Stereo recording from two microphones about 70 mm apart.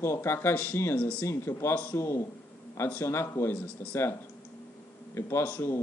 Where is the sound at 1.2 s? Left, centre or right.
Left.